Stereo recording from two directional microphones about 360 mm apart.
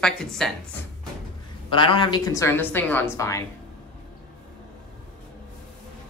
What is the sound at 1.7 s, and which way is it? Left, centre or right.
A woman's voice, centre.